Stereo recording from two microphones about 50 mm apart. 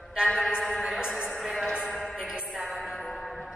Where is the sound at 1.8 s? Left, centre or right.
Centre.